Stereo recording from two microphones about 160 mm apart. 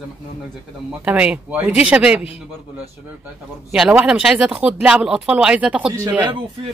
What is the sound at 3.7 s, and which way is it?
Speech, 5° right (ahead or behind).